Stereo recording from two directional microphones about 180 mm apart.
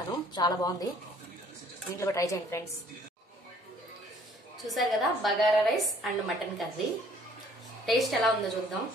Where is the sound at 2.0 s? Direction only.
15° left (ahead or behind).